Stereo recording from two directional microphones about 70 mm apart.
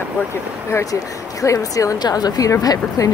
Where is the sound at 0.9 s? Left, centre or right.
Left.